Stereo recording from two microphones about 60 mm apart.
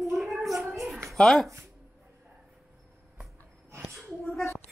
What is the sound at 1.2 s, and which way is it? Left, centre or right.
Speech, centre.